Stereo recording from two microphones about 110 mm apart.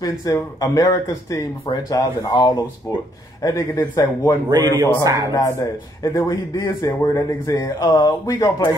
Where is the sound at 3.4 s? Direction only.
30° left (ahead or behind).